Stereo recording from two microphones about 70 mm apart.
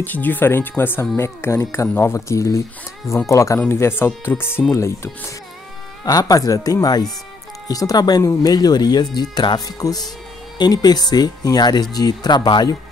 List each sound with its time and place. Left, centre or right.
0.0 s speech: left
3.7 s speech: left
6.0 s speech: left